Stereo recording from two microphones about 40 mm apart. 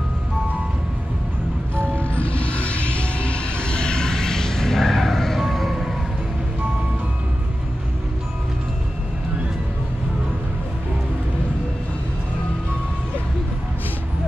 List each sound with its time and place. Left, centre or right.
2.0 s music: left; by 5.9 s centre